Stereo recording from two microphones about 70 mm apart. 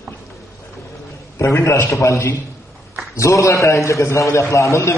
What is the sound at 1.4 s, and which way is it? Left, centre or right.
A man's voice, left.